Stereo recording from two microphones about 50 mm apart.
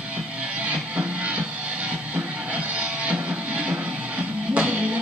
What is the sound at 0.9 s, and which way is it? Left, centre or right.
Music, right.